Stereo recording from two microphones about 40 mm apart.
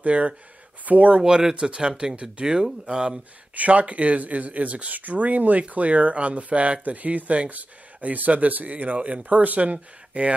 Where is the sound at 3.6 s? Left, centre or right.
Right.